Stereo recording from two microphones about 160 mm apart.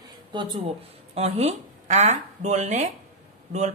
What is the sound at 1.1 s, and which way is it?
Speech, 40° right (ahead or behind).